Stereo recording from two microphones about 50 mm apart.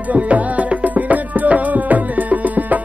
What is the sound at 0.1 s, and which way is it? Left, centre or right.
Music, right.